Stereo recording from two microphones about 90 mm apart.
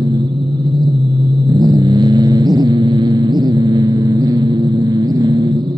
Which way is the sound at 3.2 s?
50° right (ahead or behind).